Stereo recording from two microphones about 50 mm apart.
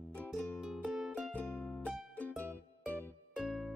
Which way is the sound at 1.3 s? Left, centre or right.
Left.